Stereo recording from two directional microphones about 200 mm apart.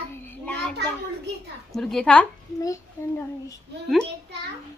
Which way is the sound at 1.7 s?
5° left (ahead or behind).